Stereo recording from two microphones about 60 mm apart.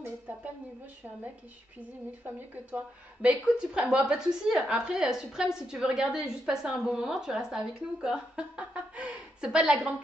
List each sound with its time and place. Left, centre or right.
2.2 s a woman's voice: right; by 9.9 s centre